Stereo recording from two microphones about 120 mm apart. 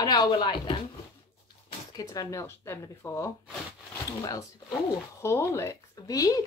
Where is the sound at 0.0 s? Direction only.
35° left (ahead or behind).